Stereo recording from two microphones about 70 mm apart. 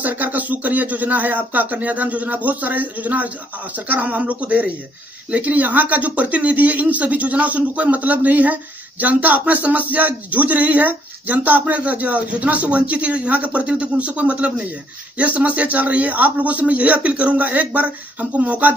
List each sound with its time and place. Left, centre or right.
0.0 s speech: right